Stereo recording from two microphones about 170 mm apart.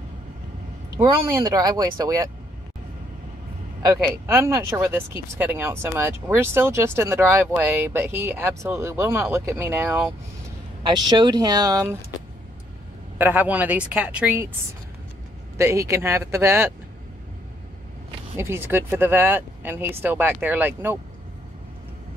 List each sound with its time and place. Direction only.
0.9 s speech: 20° right (ahead or behind)
3.8 s speech: 15° right (ahead or behind)
10.9 s speech: 25° right (ahead or behind)
13.2 s speech: 10° right (ahead or behind)
15.5 s speech: 15° right (ahead or behind)
18.3 s speech: 15° right (ahead or behind)